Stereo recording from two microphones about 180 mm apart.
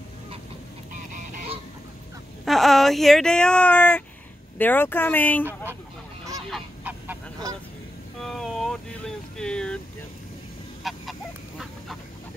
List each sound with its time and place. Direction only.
1.1 s goose: 45° right (ahead or behind)
2.4 s speech: centre (ahead or behind)
6.5 s goose: 10° right (ahead or behind)
8.2 s a sound: centre (ahead or behind)
10.8 s goose: centre (ahead or behind)